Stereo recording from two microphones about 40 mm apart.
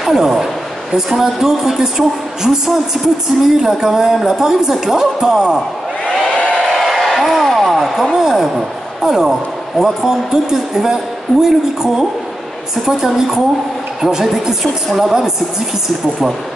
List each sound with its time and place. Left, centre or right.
0.0 s a man's voice: centre
3.3 s music: right
3.6 s speech: centre
6.0 s crowd: centre
6.5 s a sound: centre
8.2 s speech: centre